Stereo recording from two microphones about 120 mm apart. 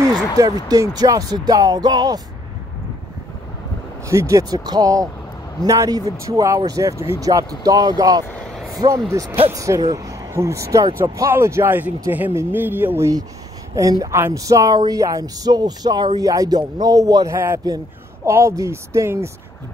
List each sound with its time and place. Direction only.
0.4 s speech: 30° right (ahead or behind)
4.1 s speech: 25° right (ahead or behind)
13.7 s speech: 30° right (ahead or behind)